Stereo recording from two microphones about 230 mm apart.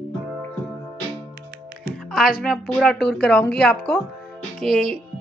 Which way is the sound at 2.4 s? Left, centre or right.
Centre.